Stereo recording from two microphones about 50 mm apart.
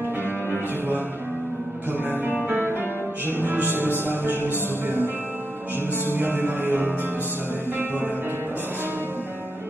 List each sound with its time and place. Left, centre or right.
0.5 s music: right
3.3 s music: right